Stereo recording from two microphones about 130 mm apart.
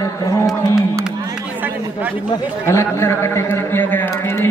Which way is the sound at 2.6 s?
20° left (ahead or behind).